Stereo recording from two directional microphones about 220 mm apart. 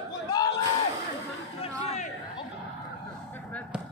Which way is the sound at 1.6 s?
30° left (ahead or behind).